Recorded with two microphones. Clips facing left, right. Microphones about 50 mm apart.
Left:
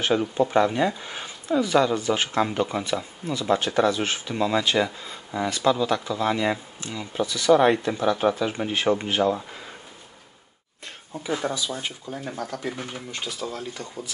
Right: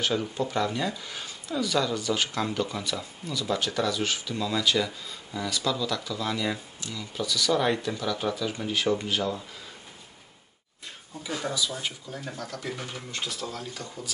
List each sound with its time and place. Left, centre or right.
0.0 s speech: left
11.2 s speech: left
11.8 s speech: centre